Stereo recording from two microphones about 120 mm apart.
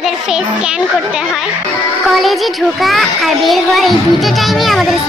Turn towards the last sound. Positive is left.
turn(degrees=0)  # may be behind; listen again after turning